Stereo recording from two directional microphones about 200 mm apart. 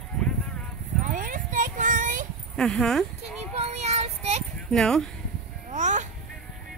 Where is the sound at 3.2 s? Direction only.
30° right (ahead or behind).